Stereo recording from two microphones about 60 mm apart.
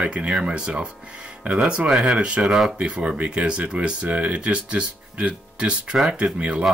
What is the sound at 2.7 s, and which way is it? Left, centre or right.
Speech, centre.